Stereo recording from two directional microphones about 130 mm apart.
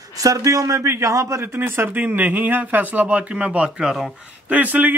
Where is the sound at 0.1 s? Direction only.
25° right (ahead or behind).